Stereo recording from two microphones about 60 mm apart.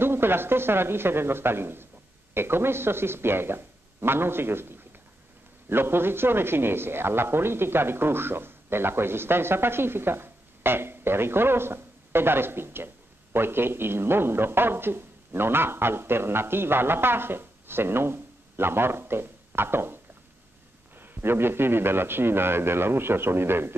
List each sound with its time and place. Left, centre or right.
0.0 s speech: right
21.0 s speech: right